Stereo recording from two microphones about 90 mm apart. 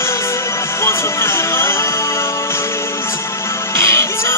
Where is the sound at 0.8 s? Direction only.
30° left (ahead or behind).